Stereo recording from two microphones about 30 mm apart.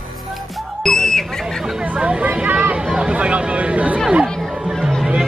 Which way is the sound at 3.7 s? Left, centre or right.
Right.